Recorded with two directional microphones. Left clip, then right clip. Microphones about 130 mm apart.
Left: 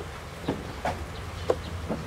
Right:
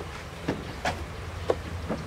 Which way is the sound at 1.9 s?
25° right (ahead or behind).